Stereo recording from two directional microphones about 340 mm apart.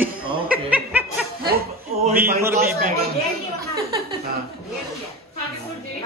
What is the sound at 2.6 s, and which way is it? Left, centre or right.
Speech, right.